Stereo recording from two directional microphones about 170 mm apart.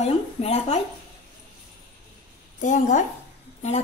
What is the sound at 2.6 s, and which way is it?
Speech, 45° left (ahead or behind).